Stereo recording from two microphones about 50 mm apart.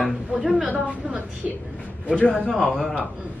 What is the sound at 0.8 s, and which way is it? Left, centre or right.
Speech, right.